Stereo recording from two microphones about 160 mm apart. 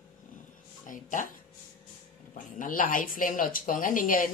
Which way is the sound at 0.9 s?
55° left (ahead or behind).